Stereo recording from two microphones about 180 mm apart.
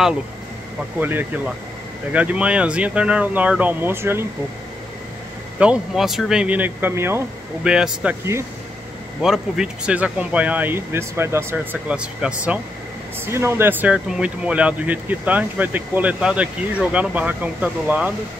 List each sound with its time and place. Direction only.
0.9 s speech: 10° right (ahead or behind)
5.6 s speech: 5° right (ahead or behind)